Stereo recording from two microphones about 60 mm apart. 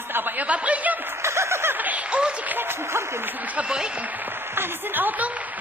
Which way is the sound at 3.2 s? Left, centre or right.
Right.